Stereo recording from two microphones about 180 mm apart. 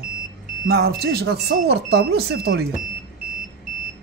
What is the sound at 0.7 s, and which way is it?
Speech, 60° right (ahead or behind).